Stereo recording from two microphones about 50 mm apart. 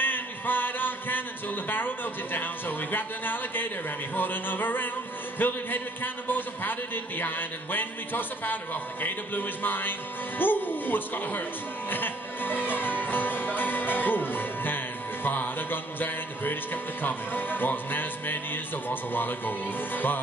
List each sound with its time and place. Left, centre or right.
0.0 s a sound: left
1.7 s speech: left
11.9 s music: left
17.0 s speech: left